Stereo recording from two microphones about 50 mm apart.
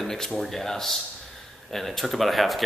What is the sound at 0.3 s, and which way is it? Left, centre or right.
Speech, centre.